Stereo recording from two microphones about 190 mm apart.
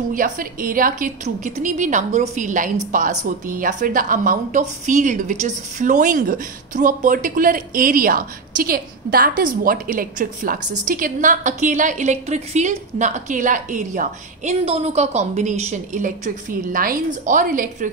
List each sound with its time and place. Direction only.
0.1 s a woman's voice: 45° right (ahead or behind)